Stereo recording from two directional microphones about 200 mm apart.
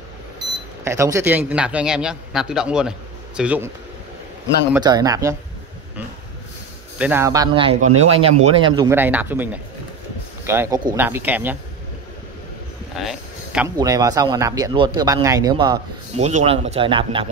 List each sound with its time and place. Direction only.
0.8 s a man's voice: 15° right (ahead or behind)
4.8 s speech: 20° right (ahead or behind)
7.0 s speech: 10° right (ahead or behind)
8.9 s speech: 10° right (ahead or behind)
13.0 s a sound: 5° right (ahead or behind)
13.7 s speech: 20° right (ahead or behind)
16.2 s speech: 35° right (ahead or behind)